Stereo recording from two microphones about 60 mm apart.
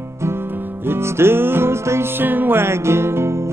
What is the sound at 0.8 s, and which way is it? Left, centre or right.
Music, right.